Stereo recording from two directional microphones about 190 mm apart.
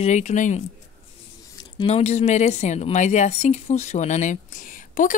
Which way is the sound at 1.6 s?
30° left (ahead or behind).